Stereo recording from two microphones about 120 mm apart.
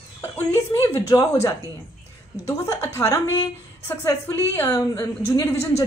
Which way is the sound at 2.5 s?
25° left (ahead or behind).